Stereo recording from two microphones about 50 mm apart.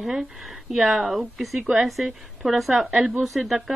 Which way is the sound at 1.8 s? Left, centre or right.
Centre.